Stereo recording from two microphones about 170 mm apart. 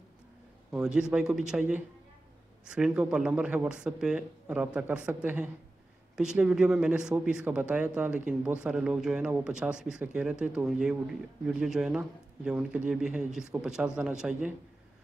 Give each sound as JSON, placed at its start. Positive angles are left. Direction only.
{"t": 0.7, "sound": "a man's voice", "side_deg": -5}